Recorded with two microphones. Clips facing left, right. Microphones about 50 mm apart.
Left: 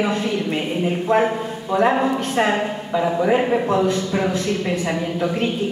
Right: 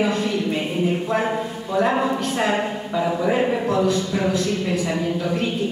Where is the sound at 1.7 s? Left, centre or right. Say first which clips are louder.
Left 2 dB; left.